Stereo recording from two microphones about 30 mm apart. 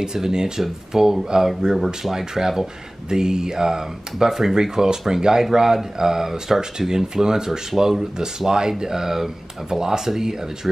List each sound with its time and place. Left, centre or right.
0.0 s speech: right
4.6 s speech: right
8.2 s speech: right